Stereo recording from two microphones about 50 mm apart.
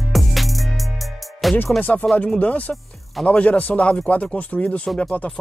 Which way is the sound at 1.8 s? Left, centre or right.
Left.